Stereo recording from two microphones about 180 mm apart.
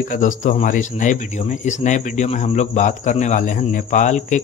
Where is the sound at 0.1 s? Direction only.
45° left (ahead or behind).